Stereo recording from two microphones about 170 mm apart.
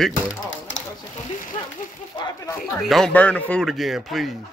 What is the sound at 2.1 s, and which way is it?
Speech, 25° left (ahead or behind).